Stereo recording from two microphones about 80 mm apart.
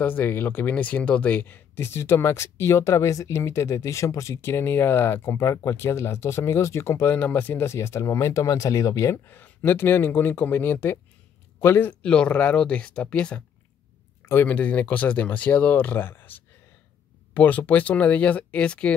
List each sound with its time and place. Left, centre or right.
0.0 s speech: left
4.4 s speech: left
7.2 s speech: left
7.7 s speech: left
9.1 s speech: left
12.0 s speech: centre
14.2 s speech: left